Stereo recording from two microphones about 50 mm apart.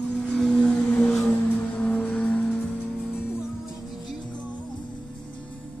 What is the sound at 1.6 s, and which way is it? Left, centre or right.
Music, left.